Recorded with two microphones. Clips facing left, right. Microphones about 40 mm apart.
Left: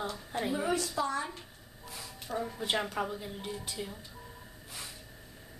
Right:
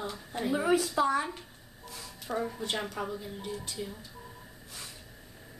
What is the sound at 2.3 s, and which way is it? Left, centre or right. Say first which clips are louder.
Speech: right 3 dB; centre.